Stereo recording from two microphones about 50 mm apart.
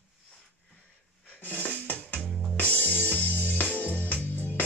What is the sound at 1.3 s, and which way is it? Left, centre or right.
Music, left.